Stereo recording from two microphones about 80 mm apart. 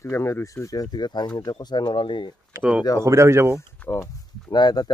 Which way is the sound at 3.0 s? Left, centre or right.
Right.